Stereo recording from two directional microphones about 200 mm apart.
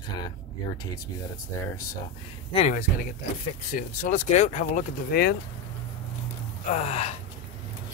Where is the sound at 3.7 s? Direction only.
35° left (ahead or behind).